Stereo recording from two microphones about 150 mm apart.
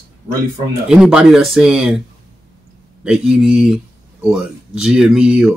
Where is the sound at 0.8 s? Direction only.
5° right (ahead or behind).